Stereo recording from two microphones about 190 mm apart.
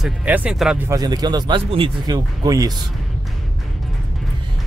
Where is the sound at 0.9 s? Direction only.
20° right (ahead or behind).